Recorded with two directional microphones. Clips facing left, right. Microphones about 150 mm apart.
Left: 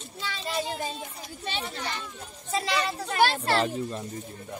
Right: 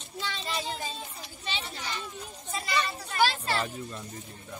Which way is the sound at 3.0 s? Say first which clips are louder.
Left 5 dB; 65° left (ahead or behind).